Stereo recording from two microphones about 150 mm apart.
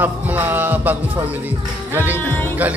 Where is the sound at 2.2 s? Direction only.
15° left (ahead or behind).